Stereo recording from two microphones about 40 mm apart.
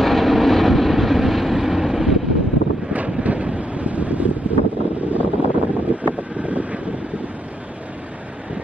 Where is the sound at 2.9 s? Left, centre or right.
Right.